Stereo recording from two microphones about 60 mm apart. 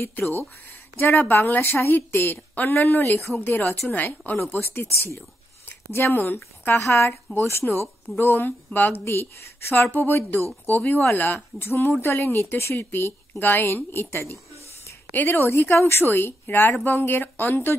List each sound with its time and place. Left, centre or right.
0.9 s a woman's voice: left
3.4 s a woman's voice: left
4.9 s a woman's voice: left
5.7 s a sound: left
6.2 s a woman's voice: left
7.6 s speech: centre
8.2 s a woman's voice: left
9.0 s a woman's voice: left